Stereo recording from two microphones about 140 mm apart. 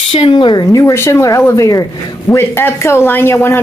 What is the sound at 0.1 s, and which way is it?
Speech, 35° left (ahead or behind).